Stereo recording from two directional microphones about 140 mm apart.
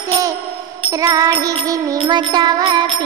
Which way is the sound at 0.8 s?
25° right (ahead or behind).